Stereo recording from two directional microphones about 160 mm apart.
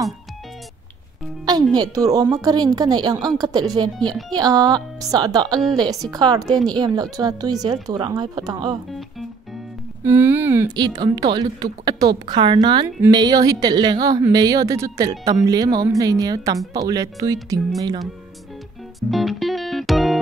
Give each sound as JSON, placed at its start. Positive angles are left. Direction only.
{"t": 1.4, "sound": "a woman's voice", "side_deg": -25}
{"t": 10.0, "sound": "speech", "side_deg": -15}
{"t": 10.8, "sound": "a woman's voice", "side_deg": -25}
{"t": 18.9, "sound": "music", "side_deg": 0}